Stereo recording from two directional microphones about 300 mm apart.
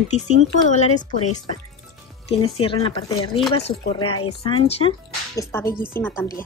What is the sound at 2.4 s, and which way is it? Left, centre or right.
A woman's voice, centre.